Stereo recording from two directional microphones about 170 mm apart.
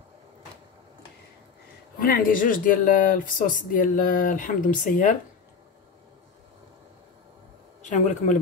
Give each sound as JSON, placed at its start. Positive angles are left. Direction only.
{"t": 2.0, "sound": "speech", "side_deg": 60}
{"t": 7.8, "sound": "a man's voice", "side_deg": 45}